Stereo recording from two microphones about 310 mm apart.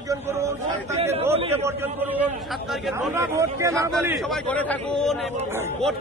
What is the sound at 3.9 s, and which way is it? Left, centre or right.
A man's voice, centre.